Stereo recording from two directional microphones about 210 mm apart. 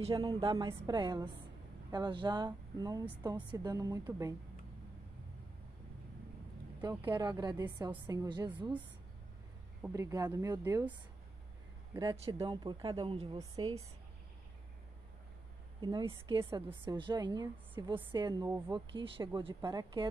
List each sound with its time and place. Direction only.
0.0 s speech: 25° right (ahead or behind)
7.1 s speech: 20° right (ahead or behind)
9.8 s speech: 10° right (ahead or behind)
15.8 s speech: 20° right (ahead or behind)